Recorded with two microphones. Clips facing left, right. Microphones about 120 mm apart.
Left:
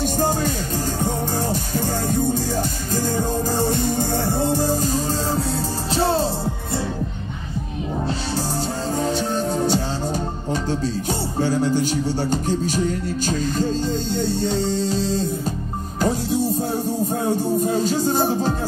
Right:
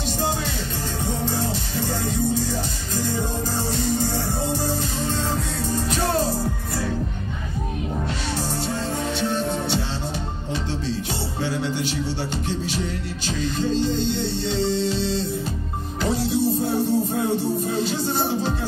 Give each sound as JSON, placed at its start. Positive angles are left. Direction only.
{"t": 1.0, "sound": "music", "side_deg": 45}
{"t": 3.5, "sound": "music", "side_deg": 50}
{"t": 5.9, "sound": "music", "side_deg": 30}
{"t": 9.0, "sound": "music", "side_deg": 35}
{"t": 11.4, "sound": "music", "side_deg": 40}